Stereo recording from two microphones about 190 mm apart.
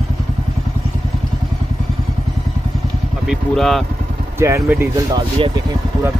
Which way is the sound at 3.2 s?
Centre (ahead or behind).